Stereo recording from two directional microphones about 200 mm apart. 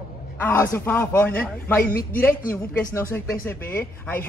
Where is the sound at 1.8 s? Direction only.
45° left (ahead or behind).